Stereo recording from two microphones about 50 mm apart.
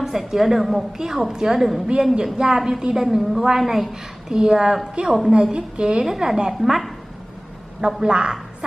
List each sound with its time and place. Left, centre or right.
0.0 s a woman's voice: centre
8.0 s a woman's voice: centre